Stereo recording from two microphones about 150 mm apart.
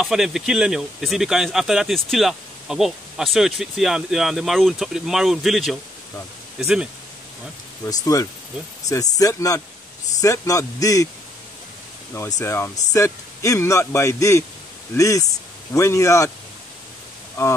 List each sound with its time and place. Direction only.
0.0 s speech: 5° right (ahead or behind)
7.8 s a man's voice: 25° left (ahead or behind)
12.1 s a man's voice: 20° left (ahead or behind)